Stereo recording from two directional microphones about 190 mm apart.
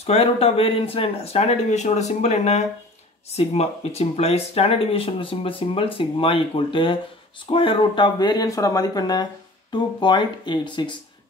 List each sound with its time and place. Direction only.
0.0 s speech: 30° left (ahead or behind)